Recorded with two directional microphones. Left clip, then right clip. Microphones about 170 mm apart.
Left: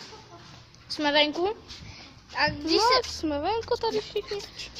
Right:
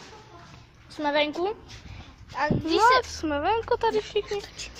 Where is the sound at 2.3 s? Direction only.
5° left (ahead or behind).